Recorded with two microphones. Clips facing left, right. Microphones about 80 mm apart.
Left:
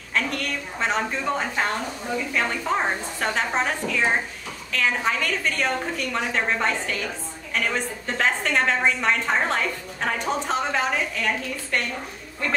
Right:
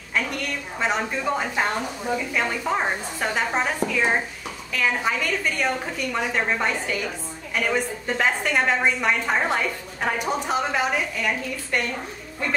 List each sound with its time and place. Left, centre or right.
0.7 s a woman's voice: centre